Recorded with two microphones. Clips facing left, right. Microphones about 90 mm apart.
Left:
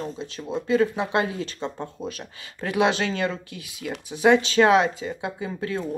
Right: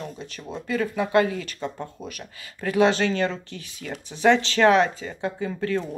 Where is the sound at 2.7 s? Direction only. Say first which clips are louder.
Right 2 dB; 15° left (ahead or behind).